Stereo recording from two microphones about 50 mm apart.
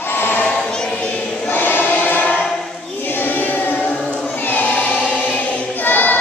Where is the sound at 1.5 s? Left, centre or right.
Left.